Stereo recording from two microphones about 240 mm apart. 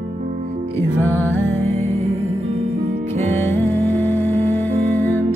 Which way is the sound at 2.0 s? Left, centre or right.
Right.